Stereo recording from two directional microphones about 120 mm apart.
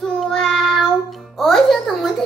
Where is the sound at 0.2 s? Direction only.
Centre (ahead or behind).